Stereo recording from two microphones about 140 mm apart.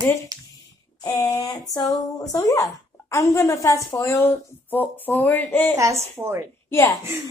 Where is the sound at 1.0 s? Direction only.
25° left (ahead or behind).